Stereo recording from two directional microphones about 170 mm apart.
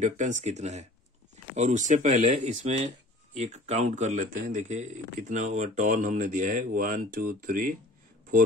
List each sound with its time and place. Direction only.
0.0 s speech: 45° right (ahead or behind)